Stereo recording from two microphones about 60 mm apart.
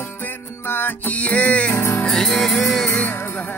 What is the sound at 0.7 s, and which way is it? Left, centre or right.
Music, left.